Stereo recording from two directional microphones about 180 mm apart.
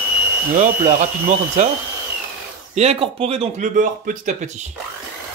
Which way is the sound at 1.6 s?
40° right (ahead or behind).